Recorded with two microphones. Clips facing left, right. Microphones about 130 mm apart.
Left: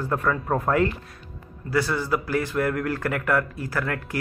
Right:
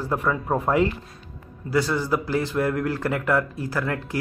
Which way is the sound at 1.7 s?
20° right (ahead or behind).